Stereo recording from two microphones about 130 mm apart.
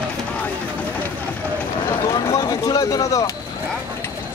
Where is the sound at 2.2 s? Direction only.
25° left (ahead or behind).